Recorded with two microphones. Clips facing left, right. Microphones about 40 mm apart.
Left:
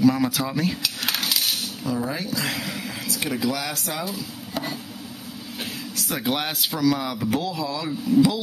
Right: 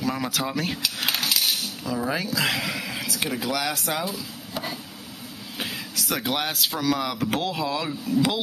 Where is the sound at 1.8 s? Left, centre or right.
Right.